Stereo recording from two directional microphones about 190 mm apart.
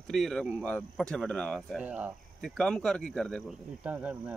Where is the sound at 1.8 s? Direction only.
10° right (ahead or behind).